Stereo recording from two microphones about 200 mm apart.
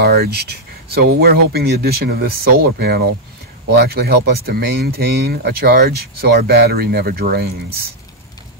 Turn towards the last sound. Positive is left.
turn(degrees=-50)  # may be behind; listen again after turning